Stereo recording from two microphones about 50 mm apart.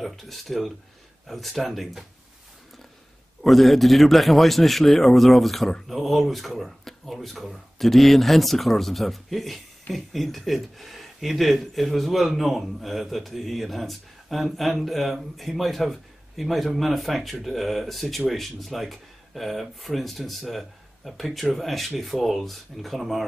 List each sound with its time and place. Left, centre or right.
0.0 s speech: centre
3.4 s speech: centre